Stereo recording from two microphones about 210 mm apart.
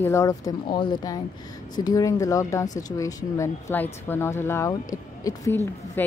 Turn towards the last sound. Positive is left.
turn(degrees=10)  # may be behind; listen again after turning